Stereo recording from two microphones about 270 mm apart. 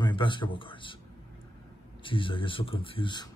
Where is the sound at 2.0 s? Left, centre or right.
Centre.